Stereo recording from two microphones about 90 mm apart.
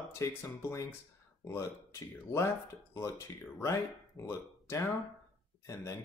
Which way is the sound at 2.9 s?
35° left (ahead or behind).